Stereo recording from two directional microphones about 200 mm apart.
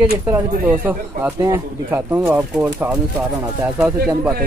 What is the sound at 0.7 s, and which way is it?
Speech, 10° right (ahead or behind).